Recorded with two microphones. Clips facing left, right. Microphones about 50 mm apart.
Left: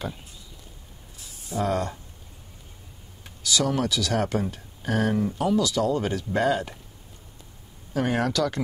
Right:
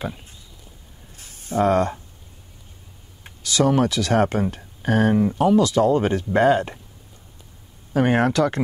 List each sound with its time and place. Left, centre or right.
1.1 s a sound: right
3.3 s speech: right
7.9 s speech: right